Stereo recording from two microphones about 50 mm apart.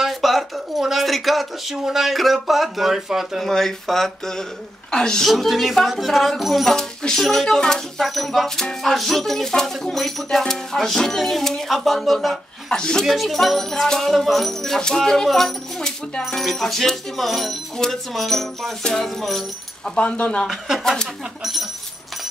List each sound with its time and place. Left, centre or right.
0.0 s music: centre
3.4 s speech: centre
5.3 s music: centre
6.7 s speech: centre
8.0 s music: centre
12.6 s speech: centre
13.0 s music: centre
20.0 s speech: left
20.8 s speech: centre